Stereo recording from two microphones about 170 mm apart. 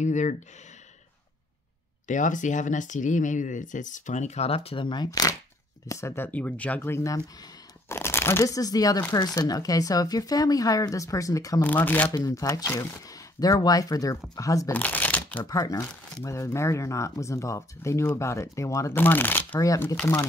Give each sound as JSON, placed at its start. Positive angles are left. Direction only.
{"t": 0.0, "sound": "speech", "side_deg": 45}
{"t": 2.0, "sound": "speech", "side_deg": 50}
{"t": 4.6, "sound": "speech", "side_deg": 30}
{"t": 12.1, "sound": "speech", "side_deg": 20}
{"t": 14.7, "sound": "shuffling cards", "side_deg": 10}
{"t": 15.4, "sound": "speech", "side_deg": 20}